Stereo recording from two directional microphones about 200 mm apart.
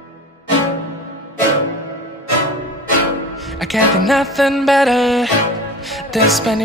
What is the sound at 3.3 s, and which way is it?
Music, centre (ahead or behind).